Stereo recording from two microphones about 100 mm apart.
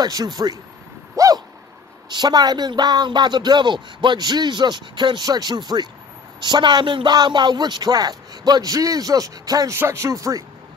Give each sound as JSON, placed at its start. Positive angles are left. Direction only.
{"t": 0.0, "sound": "speech", "side_deg": -40}
{"t": 1.1, "sound": "a sound", "side_deg": -35}
{"t": 2.0, "sound": "a man's voice", "side_deg": -45}
{"t": 9.8, "sound": "speech", "side_deg": -25}